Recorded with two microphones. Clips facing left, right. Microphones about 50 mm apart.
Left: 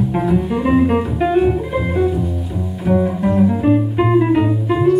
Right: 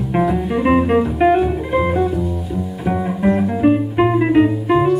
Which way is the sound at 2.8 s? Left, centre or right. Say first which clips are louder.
Left 3 dB; centre.